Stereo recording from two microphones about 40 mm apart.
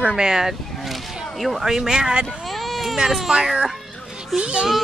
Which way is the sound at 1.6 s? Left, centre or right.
Centre.